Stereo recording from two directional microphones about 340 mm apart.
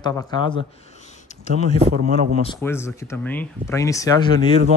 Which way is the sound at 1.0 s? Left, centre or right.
Left.